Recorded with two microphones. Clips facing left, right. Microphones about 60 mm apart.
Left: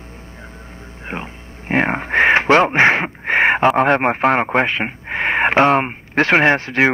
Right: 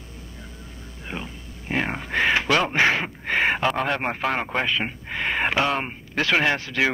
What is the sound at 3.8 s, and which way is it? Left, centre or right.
Speech, left.